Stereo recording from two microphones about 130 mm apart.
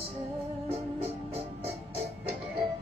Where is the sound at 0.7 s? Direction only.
50° right (ahead or behind).